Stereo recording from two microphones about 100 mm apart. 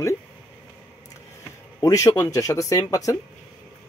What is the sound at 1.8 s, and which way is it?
Speech, 35° left (ahead or behind).